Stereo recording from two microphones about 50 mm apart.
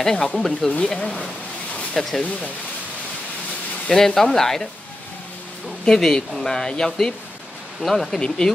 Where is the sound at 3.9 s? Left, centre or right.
Centre.